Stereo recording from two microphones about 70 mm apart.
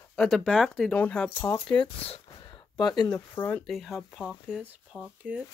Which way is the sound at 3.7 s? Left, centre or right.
Centre.